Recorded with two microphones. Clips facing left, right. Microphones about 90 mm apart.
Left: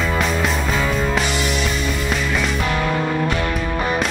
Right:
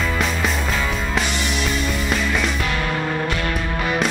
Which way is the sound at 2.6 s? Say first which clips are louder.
Left 3 dB; 30° left (ahead or behind).